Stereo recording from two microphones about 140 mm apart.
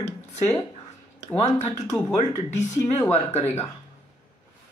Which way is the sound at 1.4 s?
55° left (ahead or behind).